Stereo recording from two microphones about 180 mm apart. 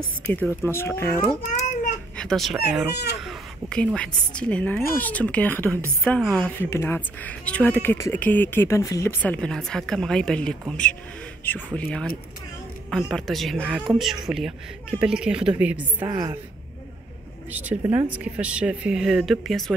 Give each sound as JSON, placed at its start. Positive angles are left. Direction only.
{"t": 0.3, "sound": "speech", "side_deg": 10}
{"t": 2.1, "sound": "speech", "side_deg": 0}
{"t": 9.2, "sound": "speech", "side_deg": 5}
{"t": 16.0, "sound": "a woman's voice", "side_deg": -20}
{"t": 17.5, "sound": "speech", "side_deg": -10}